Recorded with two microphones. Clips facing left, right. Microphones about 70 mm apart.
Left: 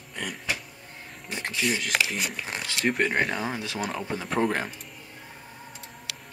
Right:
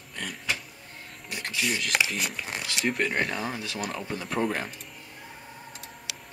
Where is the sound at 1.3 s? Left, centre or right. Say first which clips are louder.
Left 2 dB; left.